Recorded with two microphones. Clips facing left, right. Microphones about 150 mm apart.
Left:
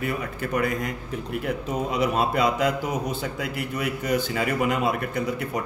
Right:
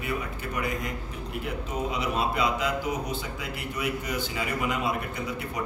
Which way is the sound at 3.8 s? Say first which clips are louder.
Left 5 dB; 50° left (ahead or behind).